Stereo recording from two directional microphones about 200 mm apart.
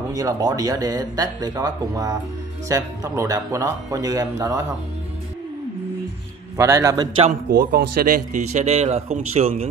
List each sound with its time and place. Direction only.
0.1 s speech: 20° right (ahead or behind)
6.5 s speech: 15° right (ahead or behind)
7.2 s a man's voice: 45° right (ahead or behind)